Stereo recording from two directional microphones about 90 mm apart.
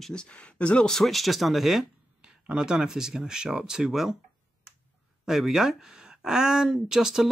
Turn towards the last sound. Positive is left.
turn(degrees=-5)  # may be behind; listen again after turning